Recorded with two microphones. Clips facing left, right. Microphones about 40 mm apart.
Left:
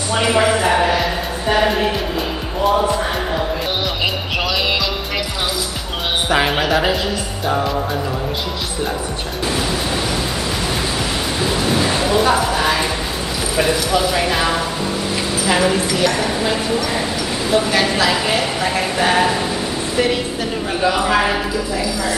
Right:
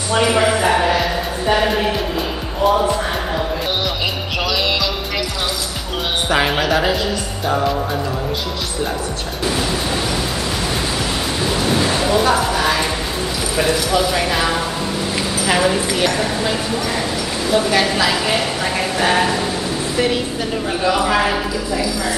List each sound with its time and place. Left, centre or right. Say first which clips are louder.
0.1 s a woman's voice: even; centre
2.6 s music: right 1 dB; centre
6.2 s a woman's voice: even; centre
11.4 s a sound: even; centre
13.6 s a woman's voice: even; centre
20.8 s a woman's voice: left 1 dB; centre